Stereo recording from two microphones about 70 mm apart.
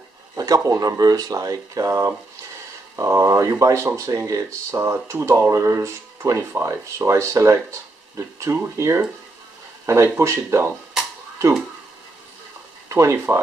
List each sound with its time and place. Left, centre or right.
0.4 s speech: right
12.8 s speech: right